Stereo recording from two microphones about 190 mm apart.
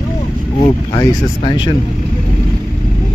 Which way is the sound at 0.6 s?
25° left (ahead or behind).